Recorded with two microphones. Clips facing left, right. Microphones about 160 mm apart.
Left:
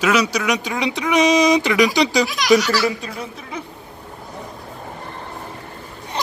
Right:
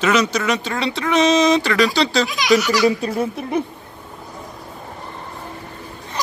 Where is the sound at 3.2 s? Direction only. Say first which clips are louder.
Right 9 dB; 50° right (ahead or behind).